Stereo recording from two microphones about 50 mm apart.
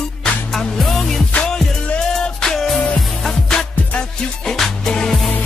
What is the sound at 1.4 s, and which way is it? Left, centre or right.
Music, centre.